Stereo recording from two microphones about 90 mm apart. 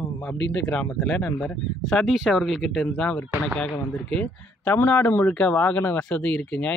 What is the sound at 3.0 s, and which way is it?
Speech, 20° left (ahead or behind).